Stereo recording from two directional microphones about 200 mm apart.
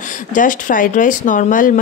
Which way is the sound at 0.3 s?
40° left (ahead or behind).